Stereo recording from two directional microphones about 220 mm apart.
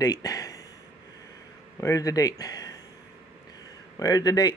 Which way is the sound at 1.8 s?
15° left (ahead or behind).